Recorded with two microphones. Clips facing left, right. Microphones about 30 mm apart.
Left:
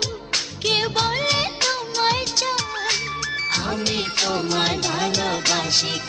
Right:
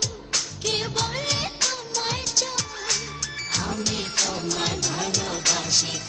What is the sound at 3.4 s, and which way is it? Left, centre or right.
Music, left.